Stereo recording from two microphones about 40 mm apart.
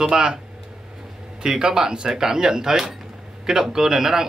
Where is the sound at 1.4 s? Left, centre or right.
Centre.